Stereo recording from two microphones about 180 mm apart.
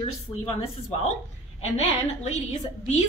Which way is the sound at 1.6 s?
35° left (ahead or behind).